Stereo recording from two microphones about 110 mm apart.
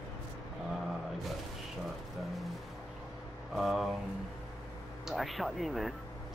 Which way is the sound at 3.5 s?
Centre (ahead or behind).